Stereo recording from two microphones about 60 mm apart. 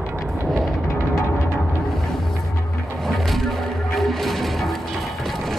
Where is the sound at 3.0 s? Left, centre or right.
Centre.